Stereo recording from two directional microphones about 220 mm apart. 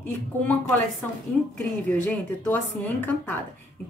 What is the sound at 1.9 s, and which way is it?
Speech, 10° left (ahead or behind).